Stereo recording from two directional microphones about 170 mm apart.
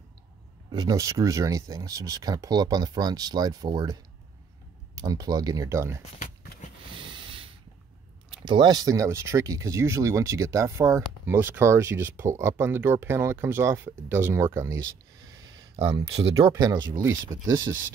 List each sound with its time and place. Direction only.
0.7 s speech: 25° right (ahead or behind)
7.0 s sanding: 30° right (ahead or behind)
8.5 s speech: 25° right (ahead or behind)
15.7 s speech: 25° right (ahead or behind)